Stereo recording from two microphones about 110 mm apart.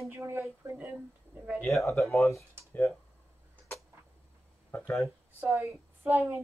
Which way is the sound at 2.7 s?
15° left (ahead or behind).